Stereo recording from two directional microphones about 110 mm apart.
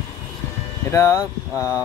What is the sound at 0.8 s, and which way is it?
Speech, 25° left (ahead or behind).